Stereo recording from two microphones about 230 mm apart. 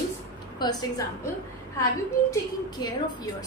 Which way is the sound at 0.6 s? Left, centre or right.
Centre.